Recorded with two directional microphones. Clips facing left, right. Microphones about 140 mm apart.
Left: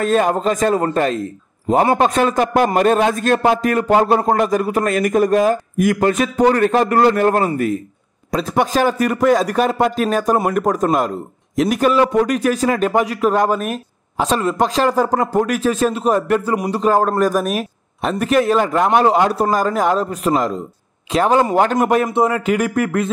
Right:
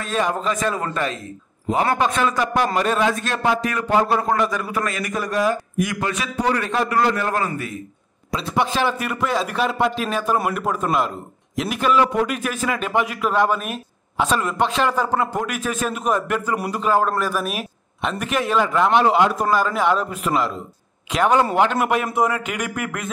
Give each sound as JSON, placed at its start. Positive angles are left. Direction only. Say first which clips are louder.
{"t": 0.0, "sound": "a man's voice", "louder": "left 7 dB", "side_deg": 45}